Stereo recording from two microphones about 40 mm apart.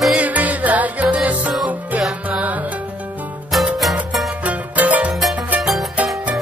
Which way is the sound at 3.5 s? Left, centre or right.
Centre.